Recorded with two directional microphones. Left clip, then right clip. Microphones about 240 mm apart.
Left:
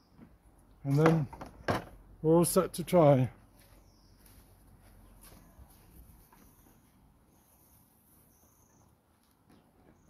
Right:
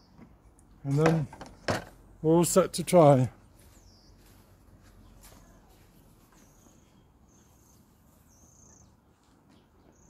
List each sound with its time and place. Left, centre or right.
0.8 s speech: centre; by 3.3 s right